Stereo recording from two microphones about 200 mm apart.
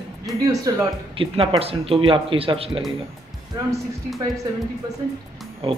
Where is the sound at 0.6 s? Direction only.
25° right (ahead or behind).